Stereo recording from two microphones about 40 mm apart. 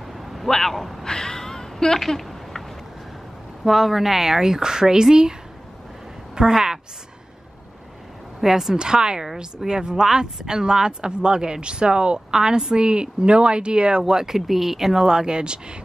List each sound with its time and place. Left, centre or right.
0.1 s vehicle: centre
1.0 s a sound: centre
3.6 s speech: centre
6.3 s a woman's voice: centre
8.4 s a woman's voice: centre
8.7 s a woman's voice: centre